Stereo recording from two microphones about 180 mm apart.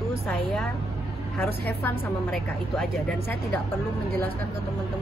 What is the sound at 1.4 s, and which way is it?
A woman's voice, 10° left (ahead or behind).